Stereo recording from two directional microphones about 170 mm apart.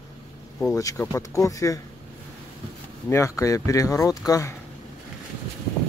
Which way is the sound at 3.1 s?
15° left (ahead or behind).